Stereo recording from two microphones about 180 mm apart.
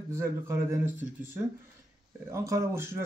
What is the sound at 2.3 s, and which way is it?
Speech, 15° right (ahead or behind).